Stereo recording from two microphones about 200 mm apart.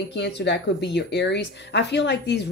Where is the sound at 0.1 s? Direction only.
55° left (ahead or behind).